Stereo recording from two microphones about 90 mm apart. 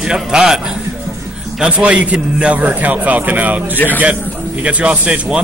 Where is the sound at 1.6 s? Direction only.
15° right (ahead or behind).